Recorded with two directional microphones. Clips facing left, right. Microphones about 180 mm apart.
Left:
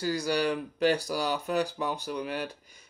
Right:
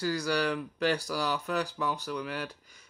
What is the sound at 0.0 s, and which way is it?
Speech, 20° left (ahead or behind).